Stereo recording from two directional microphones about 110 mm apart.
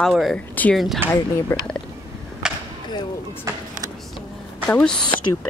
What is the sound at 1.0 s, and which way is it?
Speech, 20° right (ahead or behind).